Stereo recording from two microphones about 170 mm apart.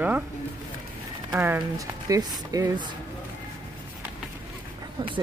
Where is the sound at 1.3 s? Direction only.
10° right (ahead or behind).